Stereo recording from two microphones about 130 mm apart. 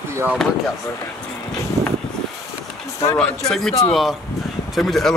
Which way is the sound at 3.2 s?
5° left (ahead or behind).